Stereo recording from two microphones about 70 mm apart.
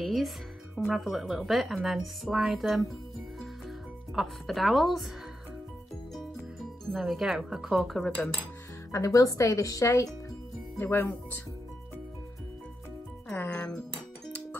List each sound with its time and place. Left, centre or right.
0.0 s music: centre
0.7 s a woman's voice: centre
3.3 s music: centre
6.9 s a woman's voice: centre
8.9 s speech: left
10.8 s speech: left
13.5 s speech: centre